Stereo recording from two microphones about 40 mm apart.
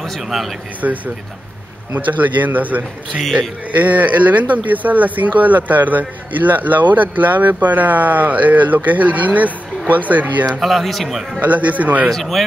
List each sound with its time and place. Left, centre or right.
0.2 s speech: centre
0.7 s speech: right
10.6 s speech: centre
11.3 s a man's voice: right
12.1 s speech: centre